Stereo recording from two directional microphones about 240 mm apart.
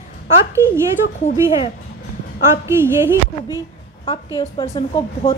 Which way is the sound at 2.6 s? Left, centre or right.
Centre.